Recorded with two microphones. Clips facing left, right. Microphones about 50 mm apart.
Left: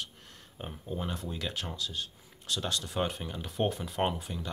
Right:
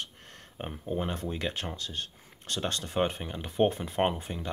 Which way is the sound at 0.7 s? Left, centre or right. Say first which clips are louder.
Right 4 dB; right.